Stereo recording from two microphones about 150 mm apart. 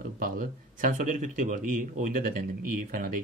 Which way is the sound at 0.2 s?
65° right (ahead or behind).